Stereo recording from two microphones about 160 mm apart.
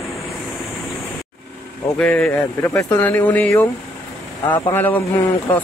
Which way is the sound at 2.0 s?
5° left (ahead or behind).